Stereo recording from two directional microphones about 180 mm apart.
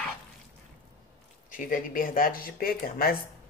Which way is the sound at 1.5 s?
50° left (ahead or behind).